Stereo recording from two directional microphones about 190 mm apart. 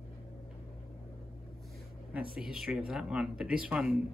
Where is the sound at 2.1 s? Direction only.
5° right (ahead or behind).